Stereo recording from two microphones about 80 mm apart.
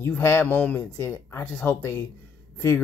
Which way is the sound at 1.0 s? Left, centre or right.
Left.